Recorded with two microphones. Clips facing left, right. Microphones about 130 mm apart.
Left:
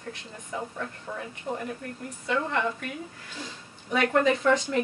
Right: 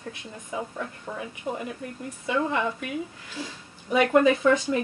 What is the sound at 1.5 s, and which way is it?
Speech, 15° right (ahead or behind).